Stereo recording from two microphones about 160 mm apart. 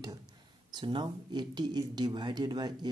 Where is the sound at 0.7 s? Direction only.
30° right (ahead or behind).